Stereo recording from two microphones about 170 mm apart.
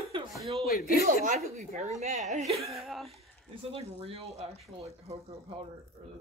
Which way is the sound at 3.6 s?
35° right (ahead or behind).